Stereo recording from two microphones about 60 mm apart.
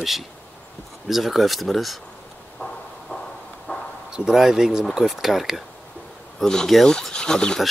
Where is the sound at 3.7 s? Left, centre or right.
Left.